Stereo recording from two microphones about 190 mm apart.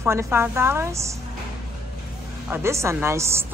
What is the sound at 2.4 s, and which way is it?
Speech, 10° right (ahead or behind).